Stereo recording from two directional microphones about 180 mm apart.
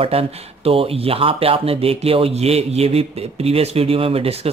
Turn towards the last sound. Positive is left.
turn(degrees=-30)  # may be behind; listen again after turning